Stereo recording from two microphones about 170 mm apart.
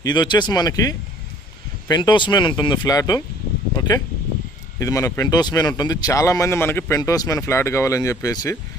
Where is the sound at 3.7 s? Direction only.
25° left (ahead or behind).